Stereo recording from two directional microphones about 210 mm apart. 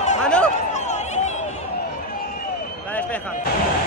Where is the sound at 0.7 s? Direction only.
35° left (ahead or behind).